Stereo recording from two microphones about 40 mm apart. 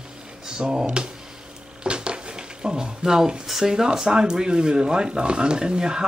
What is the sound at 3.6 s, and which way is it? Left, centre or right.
Speech, centre.